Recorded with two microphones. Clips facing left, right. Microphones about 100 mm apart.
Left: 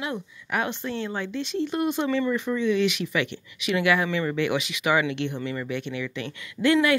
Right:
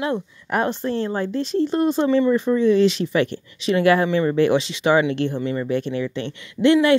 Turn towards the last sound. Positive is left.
turn(degrees=-25)  # may be behind; listen again after turning